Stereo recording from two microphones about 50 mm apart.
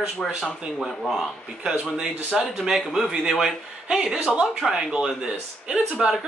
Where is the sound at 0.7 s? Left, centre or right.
Centre.